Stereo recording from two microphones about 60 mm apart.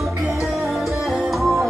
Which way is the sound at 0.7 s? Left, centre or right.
Centre.